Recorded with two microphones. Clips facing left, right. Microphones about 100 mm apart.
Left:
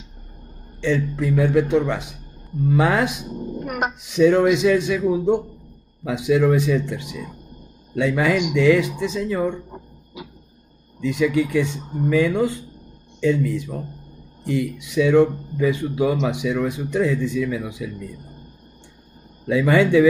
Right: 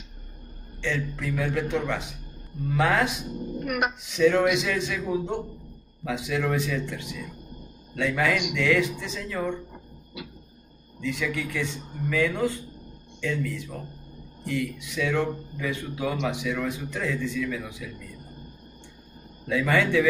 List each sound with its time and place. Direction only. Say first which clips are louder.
0.7 s speech: left 8 dB; 15° left (ahead or behind)
9.7 s speech: left 7 dB; 40° left (ahead or behind)
11.0 s speech: left 10 dB; 20° left (ahead or behind)
14.4 s speech: left 6 dB; 20° left (ahead or behind)
19.4 s speech: left 6 dB; 15° left (ahead or behind)